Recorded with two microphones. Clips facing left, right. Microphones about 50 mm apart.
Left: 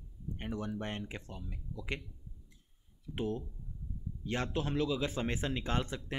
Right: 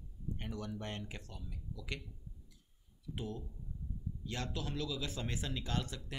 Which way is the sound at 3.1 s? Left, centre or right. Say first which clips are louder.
Left 7 dB; left.